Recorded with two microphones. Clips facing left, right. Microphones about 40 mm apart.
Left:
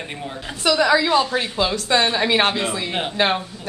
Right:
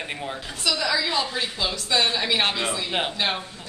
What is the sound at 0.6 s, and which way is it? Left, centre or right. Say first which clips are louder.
A woman's voice: left 8 dB; left.